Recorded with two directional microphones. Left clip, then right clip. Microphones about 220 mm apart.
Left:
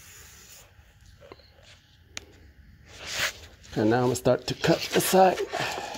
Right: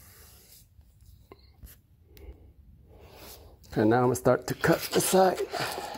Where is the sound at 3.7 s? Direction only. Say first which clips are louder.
Even; centre (ahead or behind).